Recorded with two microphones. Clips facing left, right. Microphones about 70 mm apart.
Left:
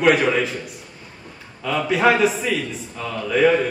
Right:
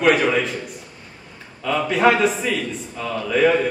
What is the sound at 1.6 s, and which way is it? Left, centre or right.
A man's voice, centre.